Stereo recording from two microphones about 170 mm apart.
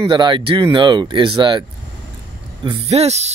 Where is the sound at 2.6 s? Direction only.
35° right (ahead or behind).